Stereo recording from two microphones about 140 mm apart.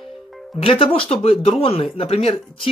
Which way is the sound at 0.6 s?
40° left (ahead or behind).